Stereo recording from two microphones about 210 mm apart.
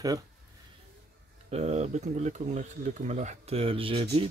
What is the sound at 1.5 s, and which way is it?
Speech, 30° right (ahead or behind).